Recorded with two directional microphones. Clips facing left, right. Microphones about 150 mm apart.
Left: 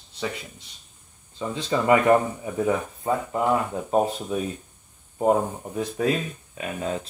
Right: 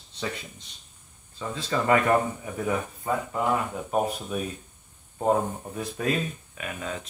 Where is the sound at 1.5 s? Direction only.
20° left (ahead or behind).